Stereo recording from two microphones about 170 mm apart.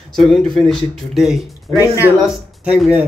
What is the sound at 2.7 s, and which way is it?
Speech, 5° right (ahead or behind).